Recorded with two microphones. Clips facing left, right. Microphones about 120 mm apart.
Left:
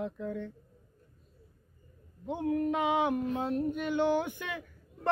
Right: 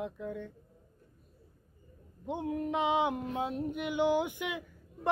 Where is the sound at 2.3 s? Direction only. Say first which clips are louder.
Left 3 dB; 20° right (ahead or behind).